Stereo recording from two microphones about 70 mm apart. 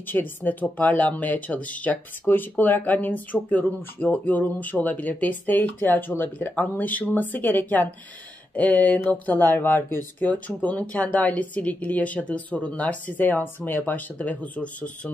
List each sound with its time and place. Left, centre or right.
0.0 s speech: left
10.2 s speech: centre